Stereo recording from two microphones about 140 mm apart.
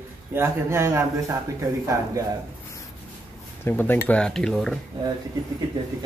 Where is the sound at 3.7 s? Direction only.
15° left (ahead or behind).